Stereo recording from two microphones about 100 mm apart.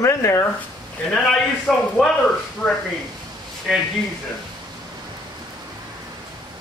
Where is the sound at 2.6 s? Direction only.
15° left (ahead or behind).